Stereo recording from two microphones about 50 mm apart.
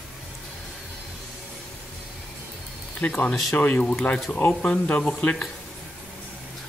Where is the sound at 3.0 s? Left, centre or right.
Left.